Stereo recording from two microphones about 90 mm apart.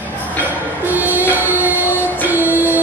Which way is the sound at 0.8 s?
20° right (ahead or behind).